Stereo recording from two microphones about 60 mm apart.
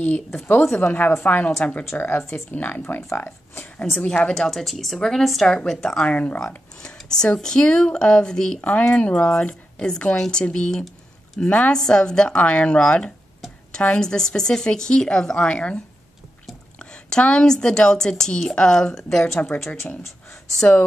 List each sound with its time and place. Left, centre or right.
0.0 s speech: left
2.0 s speech: left
4.0 s speech: centre
4.4 s speech: centre
6.0 s speech: left
6.4 s speech: centre
8.5 s speech: left
11.4 s speech: left
11.7 s a woman's voice: centre